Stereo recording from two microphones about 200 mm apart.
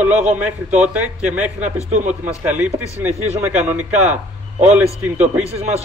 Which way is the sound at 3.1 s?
35° right (ahead or behind).